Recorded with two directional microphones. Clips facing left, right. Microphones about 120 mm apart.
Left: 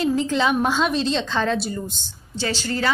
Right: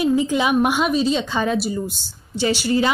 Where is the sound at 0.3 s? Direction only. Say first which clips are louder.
Right 2 dB; 10° right (ahead or behind).